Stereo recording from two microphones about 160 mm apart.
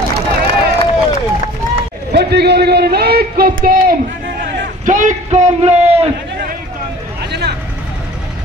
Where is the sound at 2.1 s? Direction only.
90° right; by 3.9 s 65° right (ahead or behind).